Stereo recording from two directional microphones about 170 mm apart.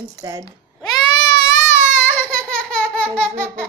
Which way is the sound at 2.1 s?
10° left (ahead or behind).